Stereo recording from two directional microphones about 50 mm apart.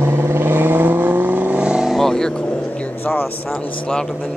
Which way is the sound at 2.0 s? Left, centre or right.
Centre.